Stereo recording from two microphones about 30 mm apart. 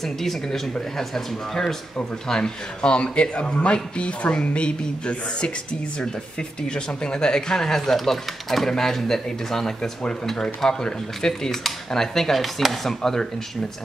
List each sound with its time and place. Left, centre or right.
0.0 s speech: centre
12.4 s speech: centre